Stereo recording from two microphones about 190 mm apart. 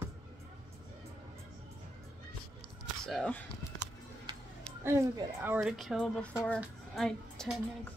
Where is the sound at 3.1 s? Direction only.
5° left (ahead or behind).